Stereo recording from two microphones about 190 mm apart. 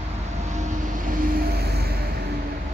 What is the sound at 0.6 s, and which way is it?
Vehicle, 45° right (ahead or behind).